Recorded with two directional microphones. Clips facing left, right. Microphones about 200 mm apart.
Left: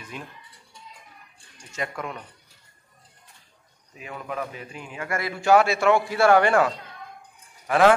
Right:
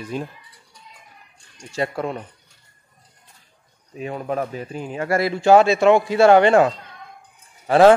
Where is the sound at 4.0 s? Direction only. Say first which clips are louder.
Right 7 dB; 35° right (ahead or behind).